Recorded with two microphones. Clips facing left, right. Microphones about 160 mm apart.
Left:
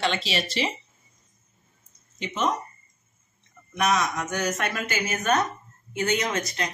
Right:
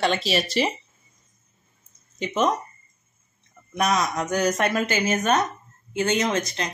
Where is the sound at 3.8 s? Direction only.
35° right (ahead or behind).